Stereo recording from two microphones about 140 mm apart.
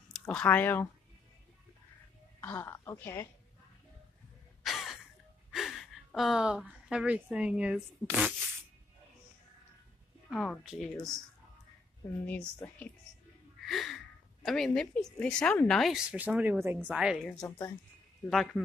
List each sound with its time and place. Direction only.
0.1 s speech: 5° left (ahead or behind)
2.4 s a woman's voice: 20° left (ahead or behind)
4.6 s a sound: centre (ahead or behind)
5.5 s speech: centre (ahead or behind)
10.3 s speech: centre (ahead or behind)
12.3 s a woman's voice: 10° left (ahead or behind); by 16.8 s 15° right (ahead or behind)
16.9 s speech: 5° right (ahead or behind)
17.2 s speech: 10° left (ahead or behind)
18.3 s speech: centre (ahead or behind)